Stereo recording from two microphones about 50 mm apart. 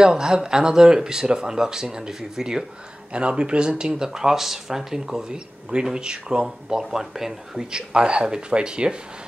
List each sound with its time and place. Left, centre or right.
0.0 s speech: centre
3.1 s speech: right
7.7 s speech: centre